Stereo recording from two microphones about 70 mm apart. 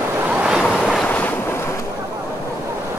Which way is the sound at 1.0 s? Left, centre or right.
Left.